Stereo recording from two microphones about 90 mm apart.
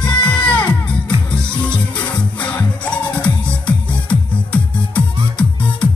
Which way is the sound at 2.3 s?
15° left (ahead or behind).